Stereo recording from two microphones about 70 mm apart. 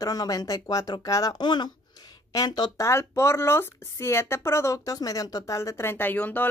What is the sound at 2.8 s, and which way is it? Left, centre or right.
A woman's voice, left.